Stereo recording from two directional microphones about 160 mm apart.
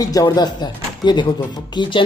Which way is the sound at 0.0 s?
25° left (ahead or behind).